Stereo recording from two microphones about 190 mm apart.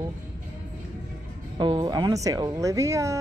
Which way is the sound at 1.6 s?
20° right (ahead or behind).